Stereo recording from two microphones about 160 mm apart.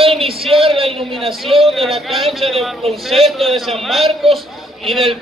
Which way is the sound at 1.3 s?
Centre (ahead or behind).